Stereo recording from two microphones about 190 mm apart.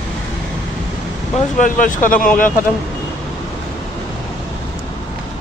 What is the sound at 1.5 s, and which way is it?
Speech, 45° left (ahead or behind).